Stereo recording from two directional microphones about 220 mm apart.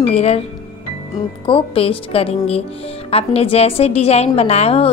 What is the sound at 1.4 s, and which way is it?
A woman's voice, 25° left (ahead or behind).